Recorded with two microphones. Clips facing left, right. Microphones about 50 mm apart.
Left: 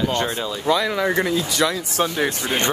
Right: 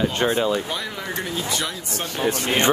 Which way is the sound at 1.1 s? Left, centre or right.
Left.